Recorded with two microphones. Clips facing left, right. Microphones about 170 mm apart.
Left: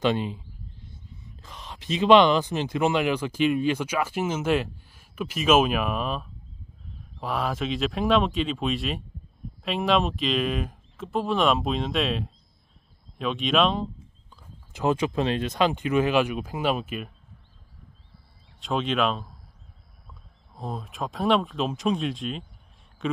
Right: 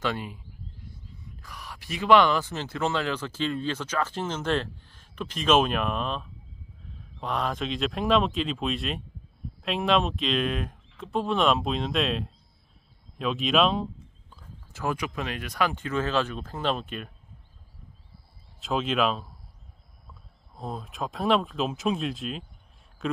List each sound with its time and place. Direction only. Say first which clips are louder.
0.0 s speech: left 6 dB; 20° left (ahead or behind)
1.4 s speech: left 2 dB; 20° left (ahead or behind); by 13.8 s centre (ahead or behind)
14.7 s speech: left 6 dB; 20° left (ahead or behind); by 17.1 s 5° left (ahead or behind)
18.6 s speech: left 1 dB; centre (ahead or behind)
20.5 s speech: left 1 dB; centre (ahead or behind)